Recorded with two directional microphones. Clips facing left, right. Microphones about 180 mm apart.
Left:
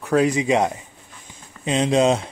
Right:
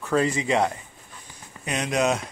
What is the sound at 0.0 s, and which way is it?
Speech, 15° left (ahead or behind).